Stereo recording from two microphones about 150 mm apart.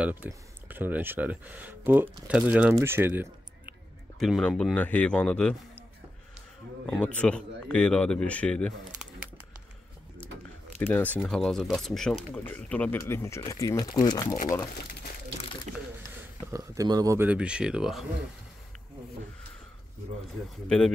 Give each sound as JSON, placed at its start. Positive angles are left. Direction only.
{"t": 0.0, "sound": "speech", "side_deg": -10}
{"t": 4.2, "sound": "a man's voice", "side_deg": 5}
{"t": 6.9, "sound": "a man's voice", "side_deg": 10}
{"t": 10.8, "sound": "a man's voice", "side_deg": 10}
{"t": 15.7, "sound": "a sound", "side_deg": -55}
{"t": 16.2, "sound": "speech", "side_deg": -20}
{"t": 20.6, "sound": "speech", "side_deg": 5}